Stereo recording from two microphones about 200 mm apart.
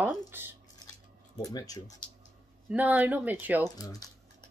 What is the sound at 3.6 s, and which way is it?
Speech, 20° left (ahead or behind).